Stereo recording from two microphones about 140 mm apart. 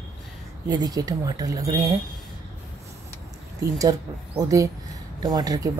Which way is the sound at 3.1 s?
25° right (ahead or behind).